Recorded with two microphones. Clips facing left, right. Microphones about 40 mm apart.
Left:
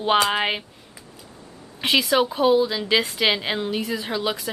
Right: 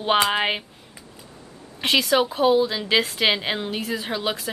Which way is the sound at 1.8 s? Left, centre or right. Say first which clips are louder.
Even; centre.